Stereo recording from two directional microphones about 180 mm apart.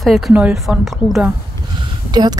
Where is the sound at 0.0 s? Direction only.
Centre (ahead or behind).